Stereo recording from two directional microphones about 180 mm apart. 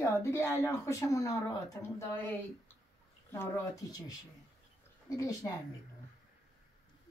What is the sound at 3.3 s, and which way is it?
Speech, 15° left (ahead or behind).